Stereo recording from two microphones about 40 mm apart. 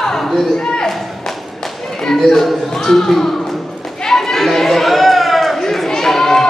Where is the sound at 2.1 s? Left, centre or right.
Centre.